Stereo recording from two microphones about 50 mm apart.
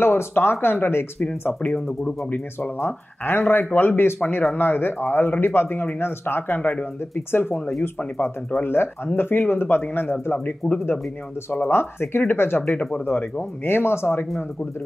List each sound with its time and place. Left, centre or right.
0.0 s speech: left
2.8 s speech: left
6.6 s speech: left
7.2 s speech: left
8.6 s speech: left
11.6 s speech: left